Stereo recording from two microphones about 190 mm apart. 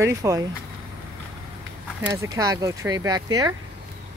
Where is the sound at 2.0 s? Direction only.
15° right (ahead or behind).